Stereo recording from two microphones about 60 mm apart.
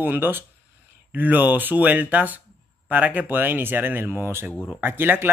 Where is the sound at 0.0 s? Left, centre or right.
Right.